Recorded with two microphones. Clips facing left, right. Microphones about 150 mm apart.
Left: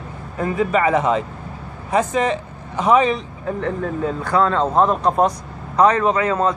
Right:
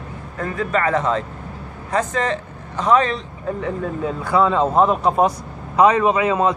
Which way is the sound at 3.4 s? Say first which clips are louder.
Left 1 dB; 5° right (ahead or behind).